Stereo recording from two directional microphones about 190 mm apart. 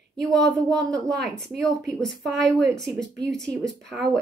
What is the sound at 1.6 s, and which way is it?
A woman's voice, centre (ahead or behind).